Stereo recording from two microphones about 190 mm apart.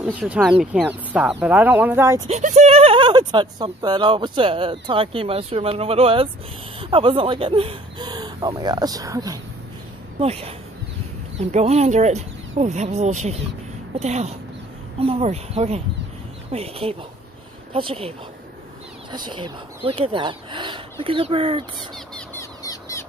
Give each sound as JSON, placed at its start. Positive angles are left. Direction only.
{"t": 0.0, "sound": "speech", "side_deg": -5}
{"t": 2.2, "sound": "speech", "side_deg": -35}
{"t": 10.1, "sound": "speech", "side_deg": -30}
{"t": 19.1, "sound": "speech", "side_deg": -25}
{"t": 21.7, "sound": "a sound", "side_deg": 5}
{"t": 22.4, "sound": "squawk", "side_deg": 15}